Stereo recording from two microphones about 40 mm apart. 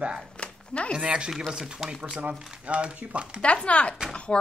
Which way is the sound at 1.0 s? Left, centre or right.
Right.